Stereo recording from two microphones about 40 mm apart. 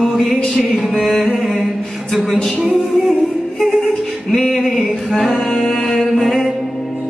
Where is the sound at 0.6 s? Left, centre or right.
Centre.